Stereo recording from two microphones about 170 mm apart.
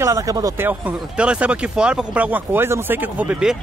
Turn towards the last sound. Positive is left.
turn(degrees=-5)  # may be behind; listen again after turning